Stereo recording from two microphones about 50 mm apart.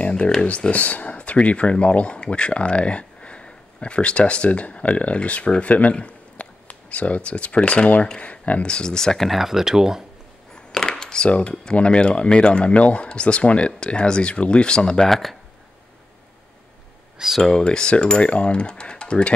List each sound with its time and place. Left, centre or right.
0.5 s speech: left
9.3 s speech: centre
10.5 s speech: centre
15.0 s speech: centre
17.4 s speech: centre